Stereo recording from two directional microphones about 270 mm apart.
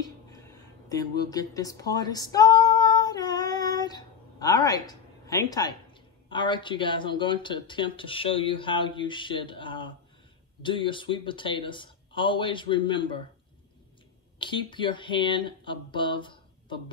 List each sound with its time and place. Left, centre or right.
0.8 s a sound: centre
6.2 s speech: centre
14.4 s speech: centre